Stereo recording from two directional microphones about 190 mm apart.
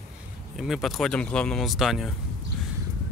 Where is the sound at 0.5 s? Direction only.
Centre (ahead or behind).